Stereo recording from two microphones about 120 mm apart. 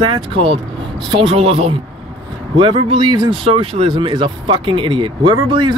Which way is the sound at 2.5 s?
45° right (ahead or behind).